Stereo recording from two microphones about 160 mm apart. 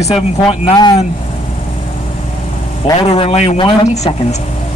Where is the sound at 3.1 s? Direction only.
40° left (ahead or behind).